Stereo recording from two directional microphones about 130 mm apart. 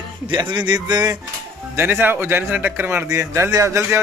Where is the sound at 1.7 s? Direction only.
15° right (ahead or behind).